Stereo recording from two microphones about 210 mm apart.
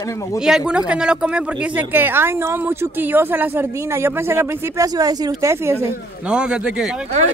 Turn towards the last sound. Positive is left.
turn(degrees=0)  # may be behind; listen again after turning